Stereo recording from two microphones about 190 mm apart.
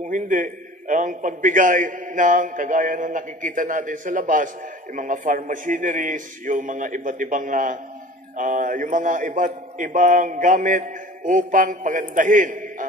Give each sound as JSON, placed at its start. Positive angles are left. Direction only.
{"t": 0.0, "sound": "a man's voice", "side_deg": -45}